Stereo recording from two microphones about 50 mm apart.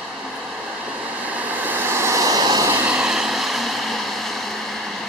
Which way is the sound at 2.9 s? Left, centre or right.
Centre.